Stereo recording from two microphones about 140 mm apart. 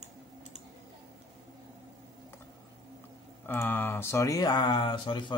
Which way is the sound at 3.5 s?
15° left (ahead or behind).